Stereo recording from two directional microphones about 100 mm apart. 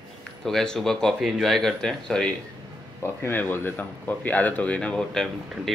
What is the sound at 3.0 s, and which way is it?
Speech, 20° left (ahead or behind).